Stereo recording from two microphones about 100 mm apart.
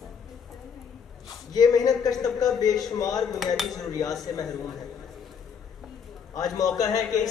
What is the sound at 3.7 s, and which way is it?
Speech, 35° left (ahead or behind).